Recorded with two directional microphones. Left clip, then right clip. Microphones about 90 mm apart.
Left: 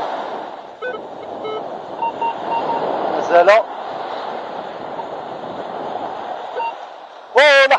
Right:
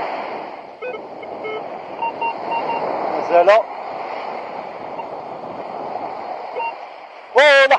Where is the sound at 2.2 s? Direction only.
25° left (ahead or behind).